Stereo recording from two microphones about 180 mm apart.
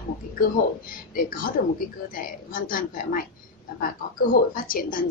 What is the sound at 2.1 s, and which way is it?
A woman's voice, 50° left (ahead or behind).